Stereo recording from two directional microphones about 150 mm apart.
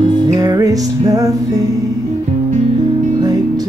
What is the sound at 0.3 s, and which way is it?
Music, 25° right (ahead or behind).